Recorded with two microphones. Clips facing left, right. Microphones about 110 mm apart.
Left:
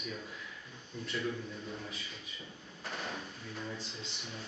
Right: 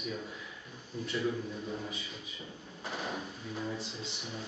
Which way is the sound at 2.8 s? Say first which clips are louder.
Right 3 dB; 5° right (ahead or behind).